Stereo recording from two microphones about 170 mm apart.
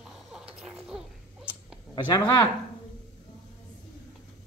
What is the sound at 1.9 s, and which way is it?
Speech, 25° left (ahead or behind).